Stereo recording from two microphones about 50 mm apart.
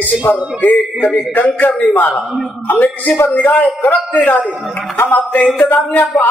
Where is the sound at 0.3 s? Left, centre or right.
Left.